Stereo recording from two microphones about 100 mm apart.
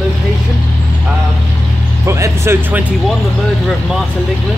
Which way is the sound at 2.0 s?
30° right (ahead or behind).